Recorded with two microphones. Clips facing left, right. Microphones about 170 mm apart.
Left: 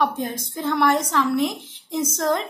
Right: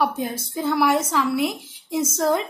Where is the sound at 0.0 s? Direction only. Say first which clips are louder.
Even; 5° right (ahead or behind).